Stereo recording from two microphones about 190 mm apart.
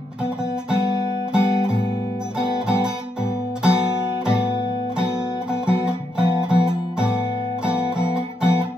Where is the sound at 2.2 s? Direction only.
5° right (ahead or behind).